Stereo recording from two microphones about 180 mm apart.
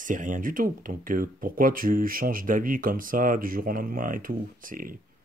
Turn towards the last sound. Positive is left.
turn(degrees=-50)  # may be behind; listen again after turning